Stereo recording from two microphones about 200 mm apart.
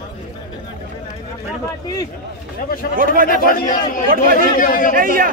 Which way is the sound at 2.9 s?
45° right (ahead or behind).